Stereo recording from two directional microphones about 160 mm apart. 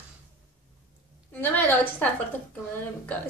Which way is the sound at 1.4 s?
10° left (ahead or behind).